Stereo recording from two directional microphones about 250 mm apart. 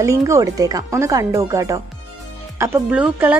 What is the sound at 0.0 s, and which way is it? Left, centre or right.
A woman's voice, centre.